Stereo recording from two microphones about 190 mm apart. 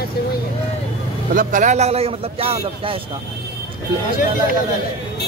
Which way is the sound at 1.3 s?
45° right (ahead or behind).